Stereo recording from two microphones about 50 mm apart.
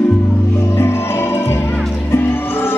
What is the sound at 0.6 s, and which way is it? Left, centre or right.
Music, left.